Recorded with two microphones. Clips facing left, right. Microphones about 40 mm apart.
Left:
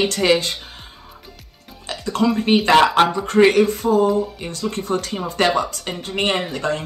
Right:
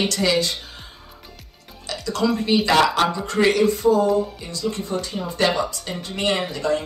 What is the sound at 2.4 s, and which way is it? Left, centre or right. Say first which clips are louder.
A woman's voice: left 4 dB; left.